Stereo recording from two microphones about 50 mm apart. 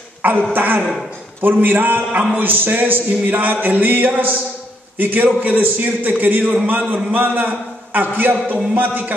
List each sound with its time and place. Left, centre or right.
0.5 s a man's voice: right